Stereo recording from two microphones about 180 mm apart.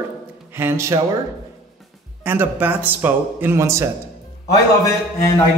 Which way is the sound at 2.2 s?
10° right (ahead or behind).